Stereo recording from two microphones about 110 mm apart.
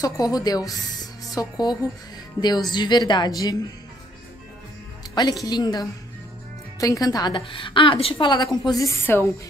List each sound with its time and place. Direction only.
0.0 s a woman's voice: 35° left (ahead or behind)
5.1 s a woman's voice: 35° left (ahead or behind); by 8.3 s 55° left (ahead or behind)
8.6 s a woman's voice: 35° left (ahead or behind)
9.0 s speech: 20° left (ahead or behind)